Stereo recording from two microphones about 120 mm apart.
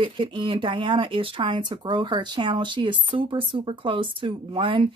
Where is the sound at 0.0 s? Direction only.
45° right (ahead or behind).